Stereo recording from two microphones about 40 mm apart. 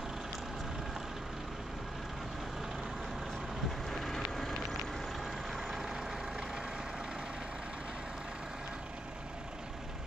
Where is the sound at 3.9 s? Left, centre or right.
Centre.